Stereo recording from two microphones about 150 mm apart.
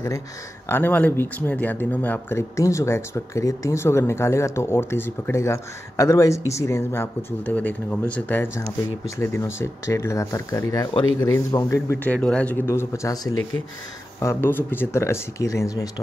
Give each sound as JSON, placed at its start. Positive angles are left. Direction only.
{"t": 0.7, "sound": "speech", "side_deg": 15}